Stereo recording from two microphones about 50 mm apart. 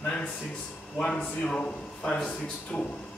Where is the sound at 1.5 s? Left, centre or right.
Left.